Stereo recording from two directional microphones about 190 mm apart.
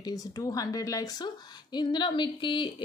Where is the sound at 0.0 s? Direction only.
20° left (ahead or behind).